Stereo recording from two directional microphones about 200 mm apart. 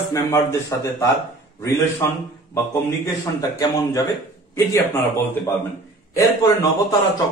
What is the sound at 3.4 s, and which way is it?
A man's voice, 15° left (ahead or behind).